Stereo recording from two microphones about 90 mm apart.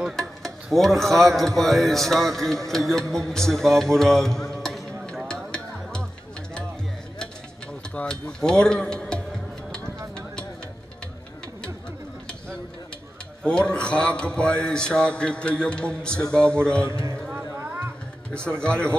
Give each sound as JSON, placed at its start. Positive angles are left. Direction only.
{"t": 0.4, "sound": "a man's voice", "side_deg": 5}
{"t": 5.3, "sound": "music", "side_deg": 10}
{"t": 7.9, "sound": "speech", "side_deg": 10}
{"t": 13.4, "sound": "speech", "side_deg": 10}
{"t": 16.8, "sound": "music", "side_deg": -30}
{"t": 18.6, "sound": "speech", "side_deg": 10}